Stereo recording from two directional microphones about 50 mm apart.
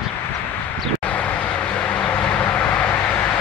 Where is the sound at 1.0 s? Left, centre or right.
Left.